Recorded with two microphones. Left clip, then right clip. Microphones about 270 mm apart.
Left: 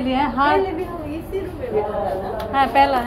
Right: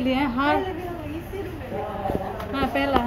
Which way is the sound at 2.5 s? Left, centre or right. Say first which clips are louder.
Left 10 dB; centre.